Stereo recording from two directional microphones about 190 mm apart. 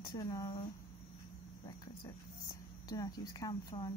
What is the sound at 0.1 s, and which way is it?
Speech, 20° left (ahead or behind).